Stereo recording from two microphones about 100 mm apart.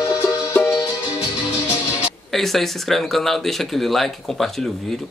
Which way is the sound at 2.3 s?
Centre (ahead or behind).